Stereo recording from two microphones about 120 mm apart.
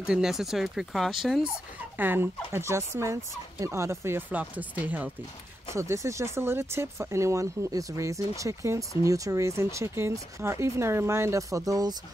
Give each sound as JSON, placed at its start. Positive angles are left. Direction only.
{"t": 0.0, "sound": "speech", "side_deg": -5}
{"t": 2.0, "sound": "speech", "side_deg": -20}